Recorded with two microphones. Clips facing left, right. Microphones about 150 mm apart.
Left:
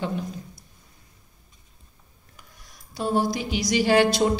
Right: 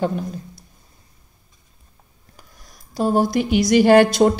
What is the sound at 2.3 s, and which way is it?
A woman's voice, 40° right (ahead or behind).